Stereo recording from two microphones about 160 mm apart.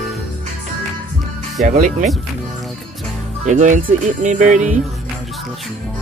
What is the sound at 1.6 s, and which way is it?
Speech, 50° right (ahead or behind).